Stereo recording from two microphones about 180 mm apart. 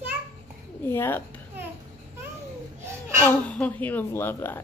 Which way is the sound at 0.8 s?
15° left (ahead or behind).